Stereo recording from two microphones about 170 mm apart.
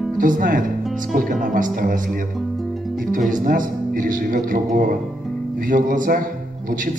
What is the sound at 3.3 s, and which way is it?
Speech, 50° right (ahead or behind).